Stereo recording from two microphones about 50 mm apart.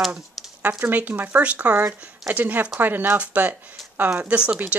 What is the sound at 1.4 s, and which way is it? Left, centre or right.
Speech, right.